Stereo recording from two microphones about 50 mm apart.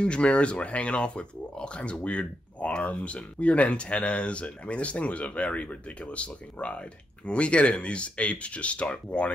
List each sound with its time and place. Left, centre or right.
0.0 s speech: left